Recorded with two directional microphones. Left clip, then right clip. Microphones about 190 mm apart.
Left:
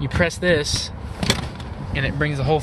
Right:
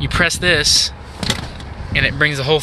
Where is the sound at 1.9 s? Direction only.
5° left (ahead or behind).